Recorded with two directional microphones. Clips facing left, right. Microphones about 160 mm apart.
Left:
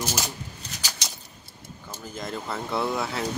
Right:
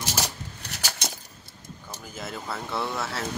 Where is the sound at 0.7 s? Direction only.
55° right (ahead or behind).